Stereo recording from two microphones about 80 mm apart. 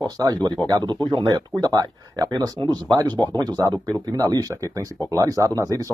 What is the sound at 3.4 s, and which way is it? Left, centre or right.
Speech, right.